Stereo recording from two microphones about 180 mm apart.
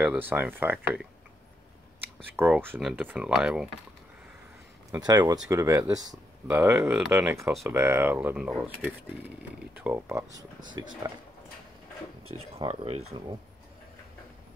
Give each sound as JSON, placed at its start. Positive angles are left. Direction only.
{"t": 0.0, "sound": "speech", "side_deg": -10}
{"t": 2.3, "sound": "speech", "side_deg": -10}
{"t": 4.9, "sound": "speech", "side_deg": -20}
{"t": 12.3, "sound": "speech", "side_deg": -30}